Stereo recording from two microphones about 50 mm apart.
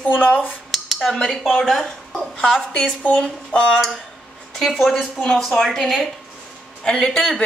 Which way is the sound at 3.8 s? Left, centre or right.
Centre.